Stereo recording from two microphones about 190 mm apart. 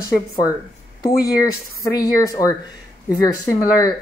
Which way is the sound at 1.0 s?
20° left (ahead or behind).